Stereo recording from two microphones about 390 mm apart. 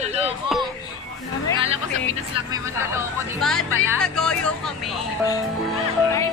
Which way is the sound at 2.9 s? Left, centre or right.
Centre.